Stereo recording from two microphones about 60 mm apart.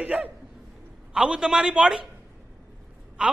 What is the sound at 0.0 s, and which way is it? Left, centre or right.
Speech, right.